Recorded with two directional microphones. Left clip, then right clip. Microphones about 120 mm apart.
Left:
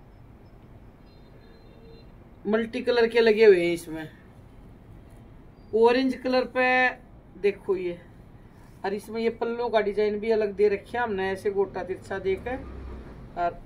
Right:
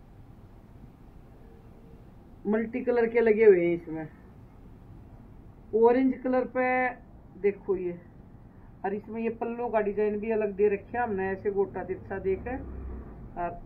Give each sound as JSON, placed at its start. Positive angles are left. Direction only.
{"t": 2.4, "sound": "speech", "side_deg": 20}
{"t": 3.5, "sound": "speech", "side_deg": 55}
{"t": 5.8, "sound": "speech", "side_deg": 25}